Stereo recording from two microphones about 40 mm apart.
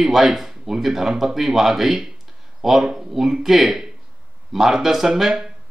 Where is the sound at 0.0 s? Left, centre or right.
Centre.